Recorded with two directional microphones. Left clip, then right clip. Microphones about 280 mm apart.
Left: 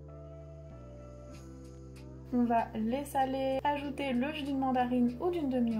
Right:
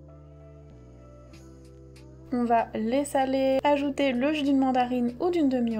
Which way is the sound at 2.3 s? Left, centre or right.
Right.